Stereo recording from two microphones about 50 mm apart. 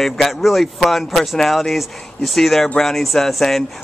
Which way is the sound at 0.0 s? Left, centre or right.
Centre.